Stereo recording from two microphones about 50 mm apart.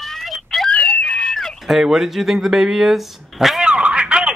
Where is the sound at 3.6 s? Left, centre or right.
Right.